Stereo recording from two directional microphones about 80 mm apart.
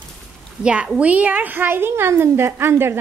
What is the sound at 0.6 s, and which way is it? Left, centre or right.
A woman's voice, centre.